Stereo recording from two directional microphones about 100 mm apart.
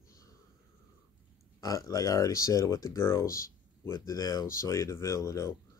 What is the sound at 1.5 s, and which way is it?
Speech, 35° left (ahead or behind).